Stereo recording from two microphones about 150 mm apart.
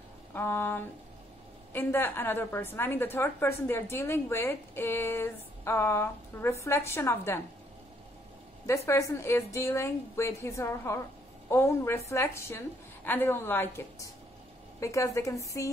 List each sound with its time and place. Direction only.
0.3 s a woman's voice: 15° left (ahead or behind)
8.6 s a woman's voice: 20° left (ahead or behind)